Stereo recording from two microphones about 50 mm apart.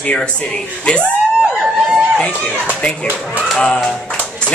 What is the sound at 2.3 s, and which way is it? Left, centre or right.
Speech, left.